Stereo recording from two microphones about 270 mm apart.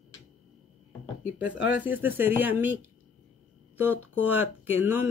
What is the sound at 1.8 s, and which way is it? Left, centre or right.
Speech, centre.